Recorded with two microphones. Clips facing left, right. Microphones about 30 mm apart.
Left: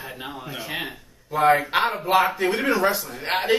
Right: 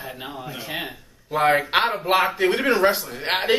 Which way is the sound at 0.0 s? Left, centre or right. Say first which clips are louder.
Right 1 dB; centre.